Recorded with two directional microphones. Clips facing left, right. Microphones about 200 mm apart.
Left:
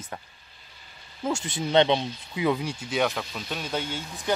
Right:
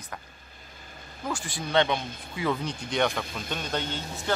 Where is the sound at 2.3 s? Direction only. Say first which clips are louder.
Left 3 dB; 15° left (ahead or behind).